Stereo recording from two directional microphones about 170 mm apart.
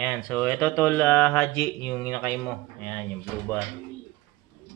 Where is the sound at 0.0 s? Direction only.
10° left (ahead or behind).